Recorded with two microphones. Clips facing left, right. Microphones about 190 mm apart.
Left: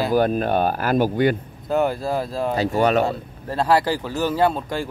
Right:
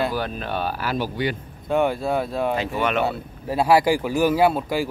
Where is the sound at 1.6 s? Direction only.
Centre (ahead or behind).